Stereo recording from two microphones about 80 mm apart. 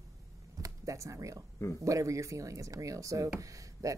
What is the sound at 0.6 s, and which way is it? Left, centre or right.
Speech, right.